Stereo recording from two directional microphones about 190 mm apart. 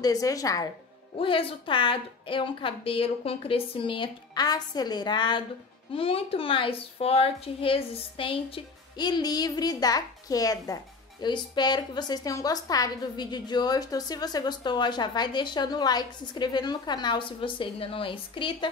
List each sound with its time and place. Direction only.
0.0 s a woman's voice: 20° left (ahead or behind)